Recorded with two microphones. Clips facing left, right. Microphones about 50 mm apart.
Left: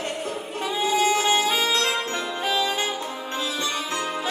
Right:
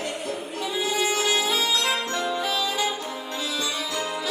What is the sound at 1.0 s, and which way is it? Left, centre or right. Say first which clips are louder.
Music: left 3 dB; left.